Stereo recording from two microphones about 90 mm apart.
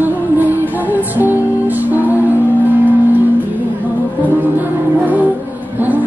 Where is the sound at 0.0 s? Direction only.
20° right (ahead or behind).